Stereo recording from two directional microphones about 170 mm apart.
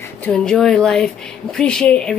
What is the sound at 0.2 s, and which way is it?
Speech, 5° left (ahead or behind).